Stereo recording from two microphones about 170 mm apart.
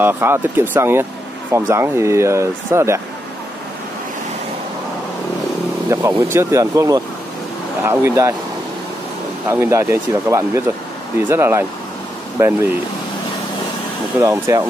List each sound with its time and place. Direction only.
0.0 s speech: 15° right (ahead or behind)
5.9 s speech: 15° right (ahead or behind)
9.5 s speech: 15° right (ahead or behind)
14.2 s speech: 15° right (ahead or behind)